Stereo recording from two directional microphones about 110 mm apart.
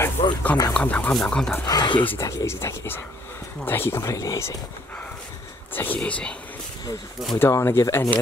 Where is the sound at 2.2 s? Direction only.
30° left (ahead or behind).